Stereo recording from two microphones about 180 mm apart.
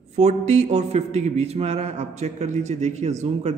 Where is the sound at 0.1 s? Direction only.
40° right (ahead or behind).